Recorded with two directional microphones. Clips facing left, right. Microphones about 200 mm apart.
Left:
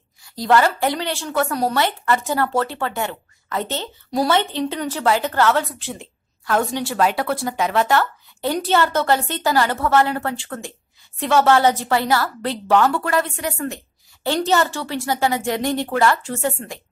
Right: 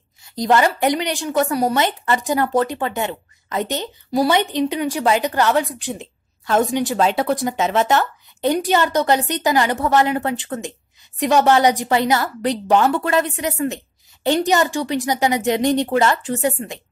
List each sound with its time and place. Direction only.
0.2 s a woman's voice: 20° right (ahead or behind)